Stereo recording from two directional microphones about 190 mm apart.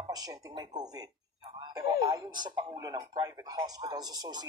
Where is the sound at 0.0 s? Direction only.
20° right (ahead or behind).